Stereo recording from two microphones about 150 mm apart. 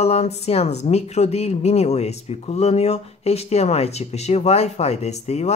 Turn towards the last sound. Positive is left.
turn(degrees=45)  # may be behind; listen again after turning